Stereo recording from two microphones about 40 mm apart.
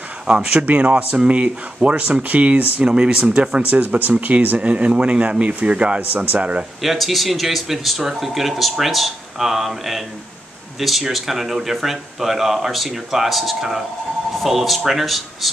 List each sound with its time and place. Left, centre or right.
0.3 s speech: right
0.7 s speech: right
2.8 s speech: right
3.6 s speech: right
4.6 s speech: right
6.8 s speech: centre